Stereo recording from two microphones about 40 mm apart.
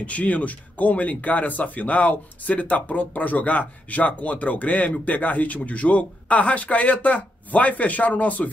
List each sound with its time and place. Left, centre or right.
0.0 s speech: left